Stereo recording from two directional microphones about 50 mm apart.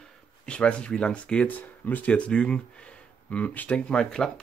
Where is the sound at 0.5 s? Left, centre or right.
Left.